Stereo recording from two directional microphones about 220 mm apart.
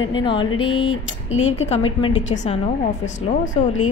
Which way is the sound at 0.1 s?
20° left (ahead or behind).